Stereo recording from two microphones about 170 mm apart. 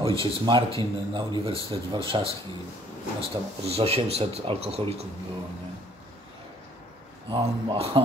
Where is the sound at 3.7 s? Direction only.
35° right (ahead or behind).